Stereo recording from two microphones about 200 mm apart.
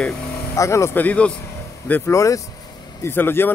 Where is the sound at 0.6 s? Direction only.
15° left (ahead or behind).